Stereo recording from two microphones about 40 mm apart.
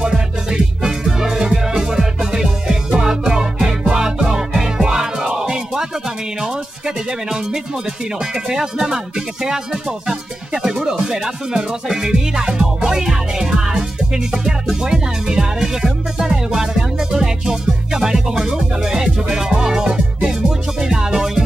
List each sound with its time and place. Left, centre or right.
0.0 s music: centre
8.5 s music: centre